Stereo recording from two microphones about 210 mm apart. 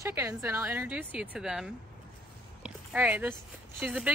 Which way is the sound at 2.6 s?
5° right (ahead or behind).